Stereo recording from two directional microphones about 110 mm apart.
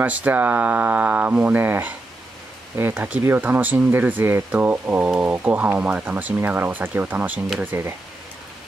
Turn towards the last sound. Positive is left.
turn(degrees=-20)  # may be behind; listen again after turning